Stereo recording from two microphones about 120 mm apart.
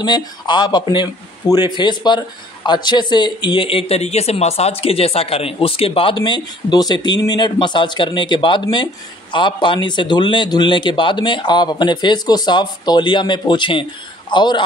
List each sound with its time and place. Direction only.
0.0 s speech: 35° left (ahead or behind)